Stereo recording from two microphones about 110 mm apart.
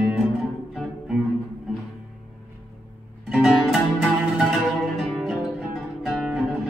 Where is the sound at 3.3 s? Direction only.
5° right (ahead or behind).